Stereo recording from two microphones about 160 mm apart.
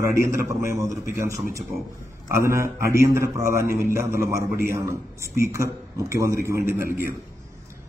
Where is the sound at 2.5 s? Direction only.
15° right (ahead or behind).